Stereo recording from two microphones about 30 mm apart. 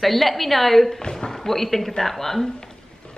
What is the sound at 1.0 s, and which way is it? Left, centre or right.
Speech, left.